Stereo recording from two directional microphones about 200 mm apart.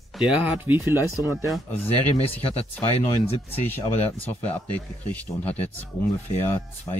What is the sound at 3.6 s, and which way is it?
Speech, 10° left (ahead or behind).